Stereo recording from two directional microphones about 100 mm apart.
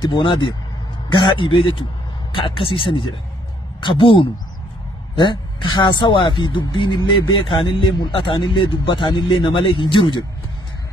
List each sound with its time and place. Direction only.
0.0 s a man's voice: 55° left (ahead or behind)